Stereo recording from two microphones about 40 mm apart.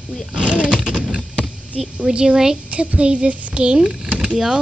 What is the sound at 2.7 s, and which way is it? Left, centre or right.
Speech, right.